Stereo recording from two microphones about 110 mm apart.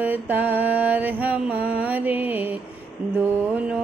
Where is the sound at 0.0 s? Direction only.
15° right (ahead or behind).